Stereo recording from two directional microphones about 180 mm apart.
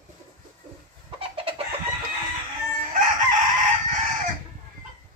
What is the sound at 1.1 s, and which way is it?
Chicken, 30° right (ahead or behind).